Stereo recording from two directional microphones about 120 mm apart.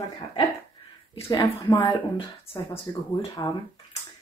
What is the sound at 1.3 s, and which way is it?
A woman's voice, 35° left (ahead or behind).